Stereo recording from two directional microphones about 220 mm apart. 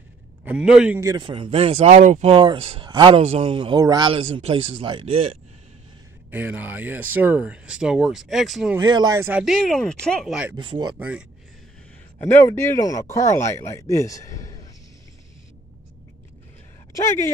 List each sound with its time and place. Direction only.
0.5 s speech: 5° right (ahead or behind)
1.1 s speech: 20° right (ahead or behind)
6.3 s speech: 10° right (ahead or behind)
8.7 s speech: 20° right (ahead or behind)
9.4 s speech: centre (ahead or behind)
10.5 s speech: 20° right (ahead or behind)
11.0 s speech: 5° right (ahead or behind)
12.2 s speech: 10° left (ahead or behind)
16.9 s speech: 10° left (ahead or behind)